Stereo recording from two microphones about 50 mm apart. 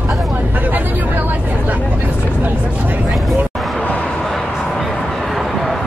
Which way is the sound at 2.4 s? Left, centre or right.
Right.